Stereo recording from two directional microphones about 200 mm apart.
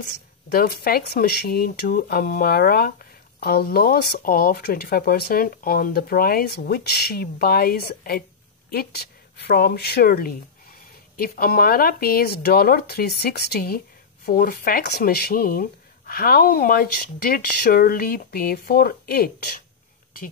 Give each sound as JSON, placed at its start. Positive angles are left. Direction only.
{"t": 0.0, "sound": "speech", "side_deg": 45}